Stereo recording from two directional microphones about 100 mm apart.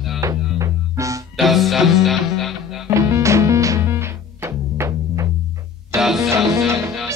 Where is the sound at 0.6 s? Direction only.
30° right (ahead or behind).